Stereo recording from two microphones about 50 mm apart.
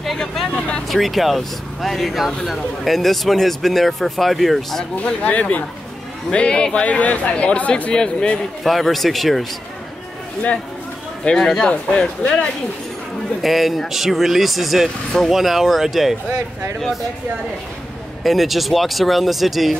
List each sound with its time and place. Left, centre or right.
0.2 s speech: centre
4.9 s speech: left
7.9 s speech: centre
8.6 s speech: centre
11.3 s speech: left
13.4 s speech: centre
18.2 s speech: centre